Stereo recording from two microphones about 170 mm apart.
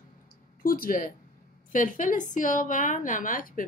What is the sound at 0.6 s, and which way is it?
A woman's voice, 55° left (ahead or behind).